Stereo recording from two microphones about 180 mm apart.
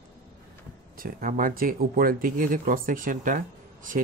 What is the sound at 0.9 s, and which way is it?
Speech, 50° right (ahead or behind).